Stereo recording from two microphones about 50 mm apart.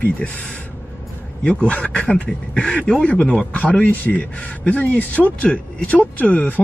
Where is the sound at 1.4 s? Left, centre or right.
Left.